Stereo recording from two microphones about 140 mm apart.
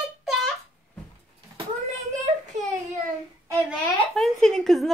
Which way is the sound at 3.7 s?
5° left (ahead or behind).